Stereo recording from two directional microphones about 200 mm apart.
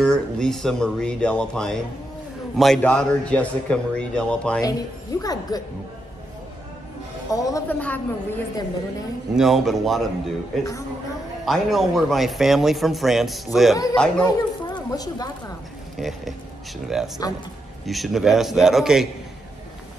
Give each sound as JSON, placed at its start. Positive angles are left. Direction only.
{"t": 0.0, "sound": "speech", "side_deg": 5}
{"t": 4.6, "sound": "speech", "side_deg": 20}
{"t": 7.3, "sound": "a woman's voice", "side_deg": 15}
{"t": 9.3, "sound": "speech", "side_deg": 0}
{"t": 14.2, "sound": "a woman's voice", "side_deg": 20}
{"t": 16.0, "sound": "speech", "side_deg": 0}